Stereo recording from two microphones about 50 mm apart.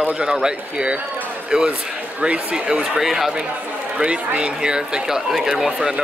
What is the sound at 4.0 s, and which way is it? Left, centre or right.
A man's voice, right.